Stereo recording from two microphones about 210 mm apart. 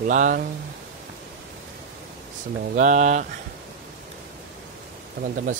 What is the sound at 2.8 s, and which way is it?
Speech, 35° right (ahead or behind).